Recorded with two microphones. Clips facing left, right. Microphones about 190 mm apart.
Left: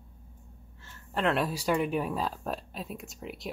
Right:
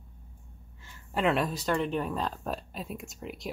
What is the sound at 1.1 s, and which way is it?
Speech, centre (ahead or behind).